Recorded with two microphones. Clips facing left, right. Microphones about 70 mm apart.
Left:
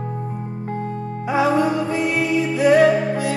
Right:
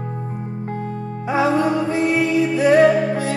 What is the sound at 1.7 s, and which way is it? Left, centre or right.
Music, right.